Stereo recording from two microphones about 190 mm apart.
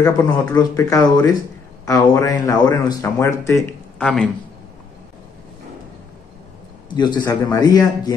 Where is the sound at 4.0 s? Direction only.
5° left (ahead or behind).